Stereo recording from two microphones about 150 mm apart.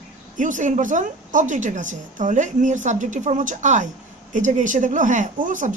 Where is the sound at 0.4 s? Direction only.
55° right (ahead or behind).